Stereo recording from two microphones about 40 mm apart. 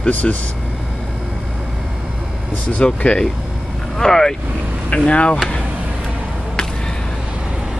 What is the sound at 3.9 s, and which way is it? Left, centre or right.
Speech, centre.